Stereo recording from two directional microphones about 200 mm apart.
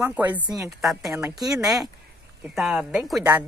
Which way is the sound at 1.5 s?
20° right (ahead or behind).